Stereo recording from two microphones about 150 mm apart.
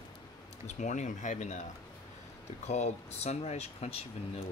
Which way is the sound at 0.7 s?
55° left (ahead or behind).